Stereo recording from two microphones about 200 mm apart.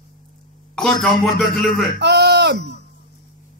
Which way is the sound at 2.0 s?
55° right (ahead or behind).